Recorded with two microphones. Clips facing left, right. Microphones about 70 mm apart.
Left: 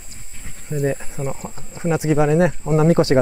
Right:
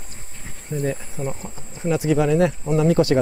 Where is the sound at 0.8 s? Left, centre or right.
Left.